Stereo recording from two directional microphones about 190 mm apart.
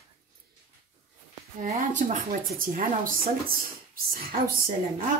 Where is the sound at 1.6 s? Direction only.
40° right (ahead or behind).